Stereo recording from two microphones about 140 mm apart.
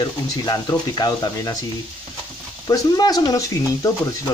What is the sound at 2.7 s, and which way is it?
Speech, 25° left (ahead or behind).